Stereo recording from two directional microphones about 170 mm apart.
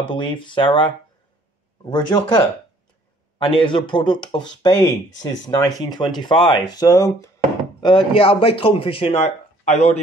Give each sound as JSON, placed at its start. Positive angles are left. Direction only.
{"t": 0.0, "sound": "speech", "side_deg": 30}
{"t": 7.8, "sound": "speech", "side_deg": 30}